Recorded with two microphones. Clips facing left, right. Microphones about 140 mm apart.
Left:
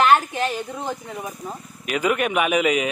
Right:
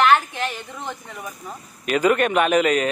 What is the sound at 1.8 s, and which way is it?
A man's voice, 10° left (ahead or behind).